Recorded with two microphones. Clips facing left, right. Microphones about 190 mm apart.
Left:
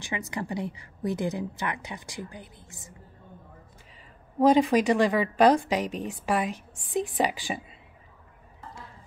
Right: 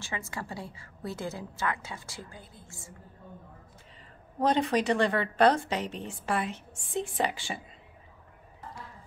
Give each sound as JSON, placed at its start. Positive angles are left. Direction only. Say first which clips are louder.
{"t": 0.0, "sound": "a woman's voice", "louder": "left 5 dB", "side_deg": 15}
{"t": 4.4, "sound": "a woman's voice", "louder": "left 6 dB", "side_deg": 15}